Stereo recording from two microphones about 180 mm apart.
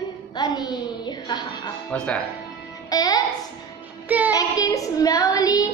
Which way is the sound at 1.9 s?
5° left (ahead or behind).